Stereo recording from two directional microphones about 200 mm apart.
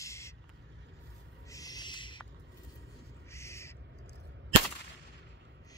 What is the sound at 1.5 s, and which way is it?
Owl, 20° left (ahead or behind).